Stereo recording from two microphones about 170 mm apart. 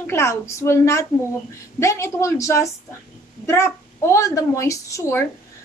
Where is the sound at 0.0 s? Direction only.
15° left (ahead or behind).